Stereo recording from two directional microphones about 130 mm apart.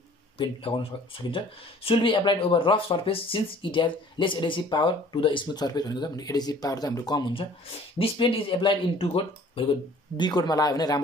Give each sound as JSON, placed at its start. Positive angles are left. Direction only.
{"t": 0.4, "sound": "speech", "side_deg": 40}
{"t": 10.1, "sound": "speech", "side_deg": 35}